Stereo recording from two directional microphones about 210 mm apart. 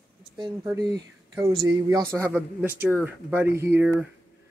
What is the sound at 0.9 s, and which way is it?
A man's voice, 15° right (ahead or behind).